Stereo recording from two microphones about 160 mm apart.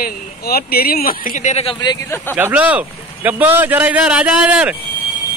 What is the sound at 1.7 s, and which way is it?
Speech, 20° left (ahead or behind).